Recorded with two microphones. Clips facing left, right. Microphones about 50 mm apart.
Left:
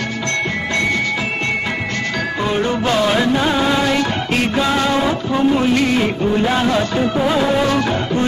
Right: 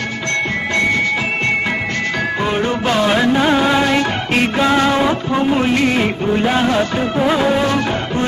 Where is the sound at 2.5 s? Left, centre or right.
Centre.